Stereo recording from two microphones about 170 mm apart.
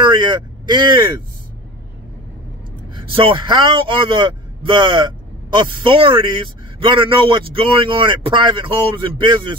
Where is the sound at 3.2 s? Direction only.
30° right (ahead or behind).